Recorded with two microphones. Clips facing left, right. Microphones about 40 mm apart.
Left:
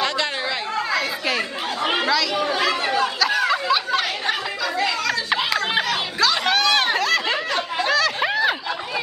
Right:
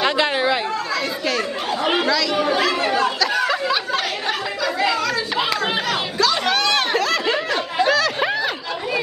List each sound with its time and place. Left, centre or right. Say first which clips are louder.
0.0 s chatter: right 5 dB; right
0.9 s chatter: even; centre
7.8 s snicker: right 3 dB; centre